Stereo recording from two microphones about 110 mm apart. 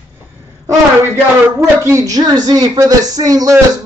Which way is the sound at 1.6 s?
25° right (ahead or behind).